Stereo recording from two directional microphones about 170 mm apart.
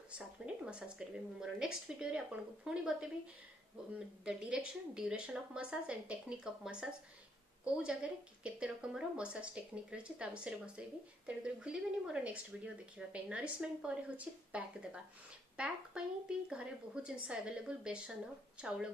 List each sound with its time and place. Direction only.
0.7 s a woman's voice: 5° right (ahead or behind)
4.2 s a woman's voice: 5° right (ahead or behind)